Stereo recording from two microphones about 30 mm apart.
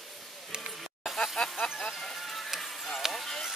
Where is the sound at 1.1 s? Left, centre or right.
Left.